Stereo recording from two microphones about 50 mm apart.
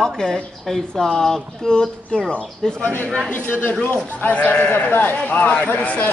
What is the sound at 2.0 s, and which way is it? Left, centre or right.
Speech, left.